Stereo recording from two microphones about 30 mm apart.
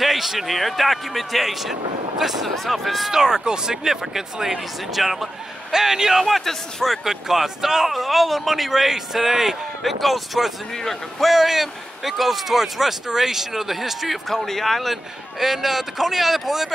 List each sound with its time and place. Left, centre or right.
0.0 s speech: centre
2.4 s speech: centre
3.1 s speech: centre
5.7 s speech: centre
7.9 s speech: centre
9.8 s speech: centre
10.8 s speech: centre
11.3 s speech: centre
14.3 s speech: centre